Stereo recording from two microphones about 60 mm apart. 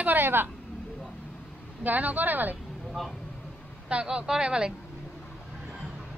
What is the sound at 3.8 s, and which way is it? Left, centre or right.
Speech, centre.